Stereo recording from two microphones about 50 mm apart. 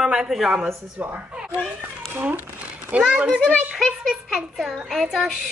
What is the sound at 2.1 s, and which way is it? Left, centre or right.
Speech, right.